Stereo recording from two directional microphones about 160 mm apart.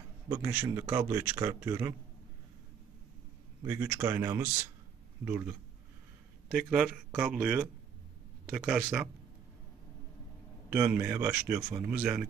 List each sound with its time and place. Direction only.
0.3 s a man's voice: 10° right (ahead or behind)
3.6 s a man's voice: 15° right (ahead or behind)
7.1 s a man's voice: 10° right (ahead or behind)
10.7 s a man's voice: 15° right (ahead or behind)